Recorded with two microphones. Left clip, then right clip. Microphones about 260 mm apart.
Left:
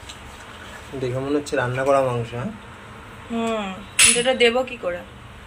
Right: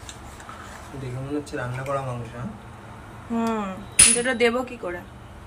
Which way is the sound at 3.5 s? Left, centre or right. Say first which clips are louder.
Left 2 dB; centre.